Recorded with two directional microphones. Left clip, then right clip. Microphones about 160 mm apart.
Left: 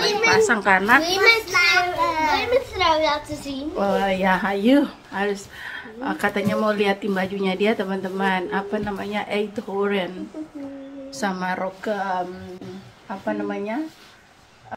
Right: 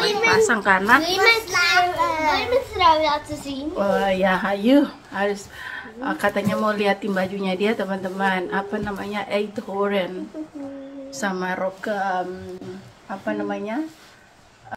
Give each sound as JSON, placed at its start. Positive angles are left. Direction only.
{"t": 0.3, "sound": "a woman's voice", "side_deg": 10}
{"t": 1.5, "sound": "child singing", "side_deg": -45}
{"t": 2.3, "sound": "a child's voice", "side_deg": 0}
{"t": 3.7, "sound": "speech", "side_deg": 20}
{"t": 11.1, "sound": "speech", "side_deg": 30}